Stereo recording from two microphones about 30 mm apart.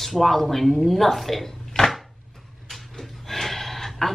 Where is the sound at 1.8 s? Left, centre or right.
Left.